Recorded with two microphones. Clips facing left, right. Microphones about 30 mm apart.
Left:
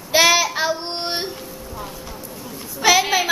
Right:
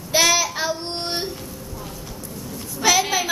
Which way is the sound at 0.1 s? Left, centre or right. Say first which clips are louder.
Left 3 dB; centre.